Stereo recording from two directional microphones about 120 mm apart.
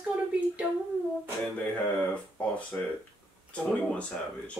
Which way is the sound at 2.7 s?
20° left (ahead or behind).